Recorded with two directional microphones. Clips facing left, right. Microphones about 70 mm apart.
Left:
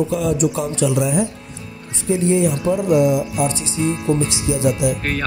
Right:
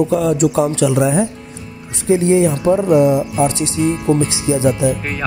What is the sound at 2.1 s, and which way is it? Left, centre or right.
Speech, right.